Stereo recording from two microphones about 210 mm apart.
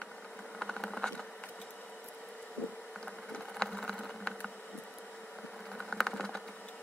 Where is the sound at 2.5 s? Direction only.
5° left (ahead or behind).